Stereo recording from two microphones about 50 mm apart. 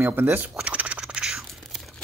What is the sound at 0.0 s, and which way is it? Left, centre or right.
Speech, right.